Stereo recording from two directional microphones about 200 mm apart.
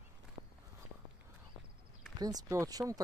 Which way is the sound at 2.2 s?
20° right (ahead or behind).